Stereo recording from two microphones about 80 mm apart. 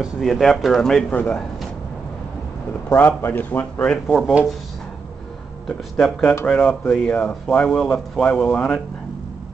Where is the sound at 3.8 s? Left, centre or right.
Centre.